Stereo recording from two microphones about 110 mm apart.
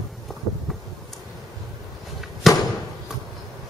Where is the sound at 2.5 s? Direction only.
Centre (ahead or behind).